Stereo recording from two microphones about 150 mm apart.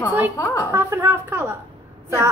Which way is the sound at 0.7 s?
15° right (ahead or behind).